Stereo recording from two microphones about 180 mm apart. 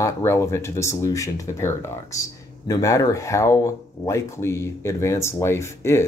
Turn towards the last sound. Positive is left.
turn(degrees=15)  # may be behind; listen again after turning